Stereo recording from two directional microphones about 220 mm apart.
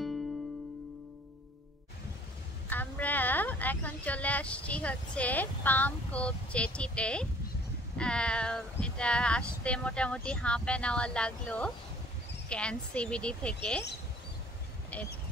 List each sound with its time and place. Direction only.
2.7 s speech: 10° left (ahead or behind)
14.9 s speech: 5° left (ahead or behind)